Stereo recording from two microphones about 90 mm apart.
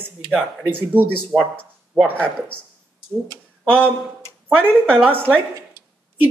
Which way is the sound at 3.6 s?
10° left (ahead or behind).